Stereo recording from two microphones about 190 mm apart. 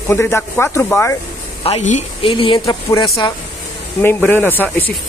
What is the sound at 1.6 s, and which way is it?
Speech, 35° left (ahead or behind).